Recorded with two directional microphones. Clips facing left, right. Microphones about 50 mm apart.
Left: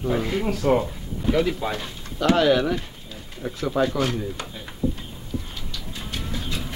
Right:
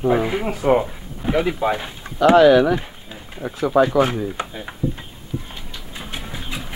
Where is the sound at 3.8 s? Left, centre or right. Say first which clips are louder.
Right 5 dB; right.